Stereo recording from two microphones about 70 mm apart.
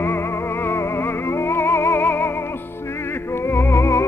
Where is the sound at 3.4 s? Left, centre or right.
Left.